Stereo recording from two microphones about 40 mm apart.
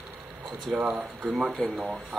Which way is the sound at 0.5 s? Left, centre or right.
Right.